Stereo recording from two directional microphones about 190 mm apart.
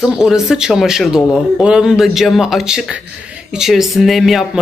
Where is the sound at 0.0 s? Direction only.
5° right (ahead or behind).